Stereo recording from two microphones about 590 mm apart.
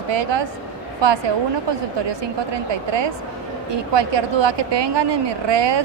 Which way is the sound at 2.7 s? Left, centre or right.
Right.